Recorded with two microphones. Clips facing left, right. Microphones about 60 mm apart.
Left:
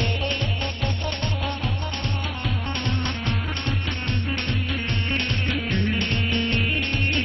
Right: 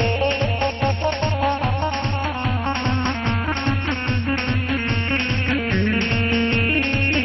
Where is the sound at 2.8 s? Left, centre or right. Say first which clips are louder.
Right 5 dB; right.